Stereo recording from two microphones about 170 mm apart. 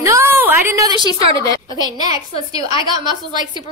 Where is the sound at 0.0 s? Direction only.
15° right (ahead or behind).